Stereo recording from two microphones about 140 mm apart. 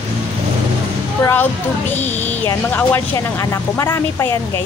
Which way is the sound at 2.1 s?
15° left (ahead or behind).